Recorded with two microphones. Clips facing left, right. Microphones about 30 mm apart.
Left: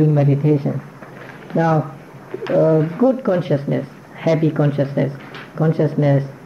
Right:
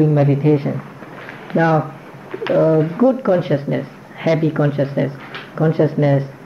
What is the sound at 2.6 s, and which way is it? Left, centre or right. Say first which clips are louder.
Speech: right 1 dB; centre.